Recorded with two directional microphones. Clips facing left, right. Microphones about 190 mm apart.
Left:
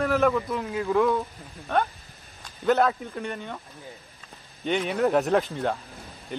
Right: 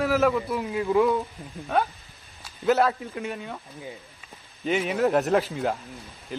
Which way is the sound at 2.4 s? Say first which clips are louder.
Even; 5° right (ahead or behind).